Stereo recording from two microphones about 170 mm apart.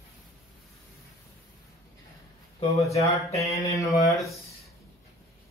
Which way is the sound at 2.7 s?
20° left (ahead or behind).